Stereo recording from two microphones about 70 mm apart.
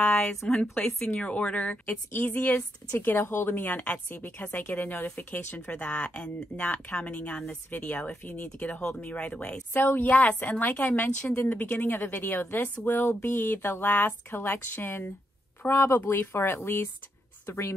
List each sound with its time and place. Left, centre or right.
0.0 s a woman's voice: centre; by 17.7 s left